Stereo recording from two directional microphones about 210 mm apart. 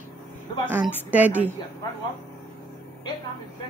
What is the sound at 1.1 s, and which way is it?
Speech, 10° right (ahead or behind).